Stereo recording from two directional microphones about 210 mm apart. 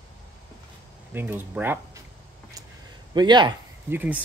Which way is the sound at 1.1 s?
10° right (ahead or behind).